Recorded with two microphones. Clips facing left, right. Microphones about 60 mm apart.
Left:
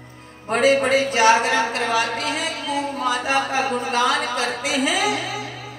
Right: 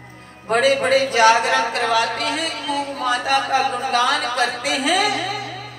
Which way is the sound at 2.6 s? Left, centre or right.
Right.